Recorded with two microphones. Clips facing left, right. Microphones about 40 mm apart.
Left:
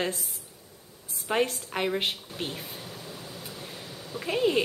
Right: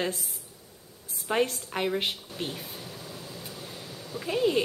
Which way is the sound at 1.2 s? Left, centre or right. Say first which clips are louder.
Even; centre.